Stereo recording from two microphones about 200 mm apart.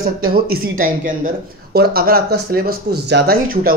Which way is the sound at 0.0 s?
45° right (ahead or behind).